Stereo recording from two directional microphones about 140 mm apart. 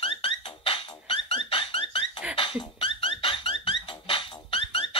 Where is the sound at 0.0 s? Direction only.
40° left (ahead or behind).